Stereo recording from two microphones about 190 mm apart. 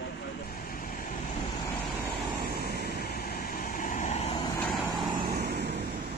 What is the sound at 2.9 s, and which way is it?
Vehicle, 55° left (ahead or behind).